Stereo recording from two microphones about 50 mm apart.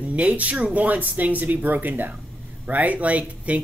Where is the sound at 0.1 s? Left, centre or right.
Right.